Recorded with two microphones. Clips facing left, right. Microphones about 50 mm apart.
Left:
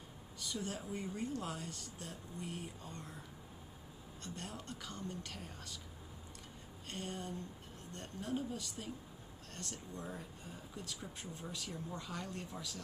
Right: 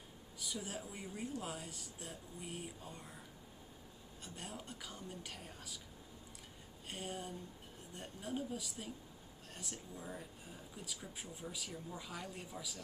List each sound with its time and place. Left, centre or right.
0.4 s speech: centre
4.2 s speech: centre
6.9 s speech: centre